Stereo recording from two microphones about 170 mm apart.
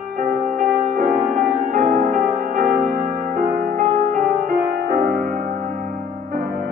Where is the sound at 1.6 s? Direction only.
55° right (ahead or behind).